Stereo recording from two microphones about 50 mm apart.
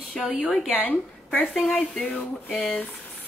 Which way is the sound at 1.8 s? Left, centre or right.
Left.